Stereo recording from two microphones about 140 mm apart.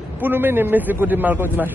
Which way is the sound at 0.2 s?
15° right (ahead or behind).